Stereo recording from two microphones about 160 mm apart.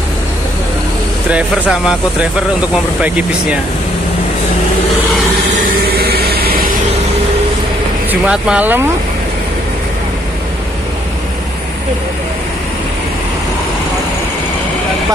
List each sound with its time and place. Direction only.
1.3 s speech: 5° right (ahead or behind)
3.0 s speech: 5° right (ahead or behind)
5.6 s vehicle: 75° right (ahead or behind)
8.1 s speech: 5° right (ahead or behind)